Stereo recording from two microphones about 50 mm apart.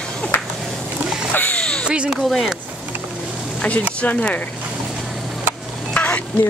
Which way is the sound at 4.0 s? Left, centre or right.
Left.